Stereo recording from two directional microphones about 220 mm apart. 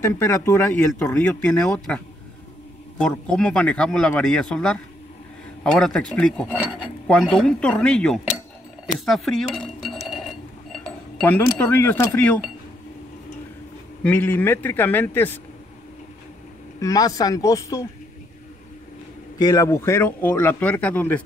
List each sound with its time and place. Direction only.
0.0 s speech: 15° left (ahead or behind)
3.0 s speech: 5° left (ahead or behind)
11.2 s speech: 10° left (ahead or behind)
14.0 s speech: 10° left (ahead or behind)
16.8 s speech: 15° left (ahead or behind)
19.3 s speech: 15° left (ahead or behind)